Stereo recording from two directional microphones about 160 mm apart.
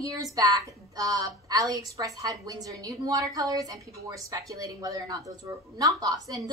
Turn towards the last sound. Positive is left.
turn(degrees=-20)  # may be behind; listen again after turning